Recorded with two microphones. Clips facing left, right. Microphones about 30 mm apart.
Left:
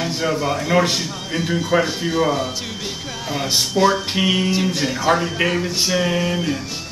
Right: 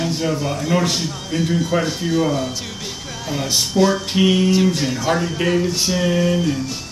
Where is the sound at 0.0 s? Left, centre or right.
Centre.